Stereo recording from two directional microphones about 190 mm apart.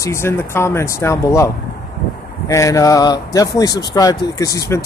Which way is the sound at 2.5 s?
15° left (ahead or behind).